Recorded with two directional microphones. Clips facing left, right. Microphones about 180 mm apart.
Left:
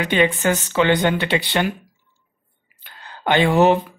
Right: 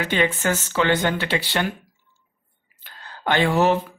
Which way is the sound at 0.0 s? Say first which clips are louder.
Left 4 dB; 15° left (ahead or behind).